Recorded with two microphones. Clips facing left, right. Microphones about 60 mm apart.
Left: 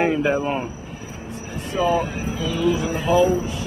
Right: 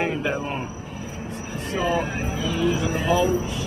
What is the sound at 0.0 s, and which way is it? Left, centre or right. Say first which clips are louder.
Speech: left 5 dB; centre.